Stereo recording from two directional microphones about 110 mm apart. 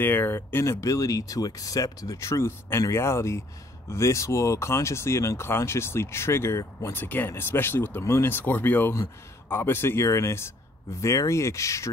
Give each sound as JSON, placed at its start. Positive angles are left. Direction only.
{"t": 0.0, "sound": "speech", "side_deg": 20}